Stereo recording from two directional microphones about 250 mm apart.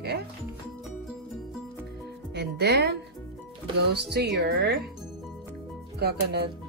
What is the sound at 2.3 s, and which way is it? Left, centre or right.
Music, right.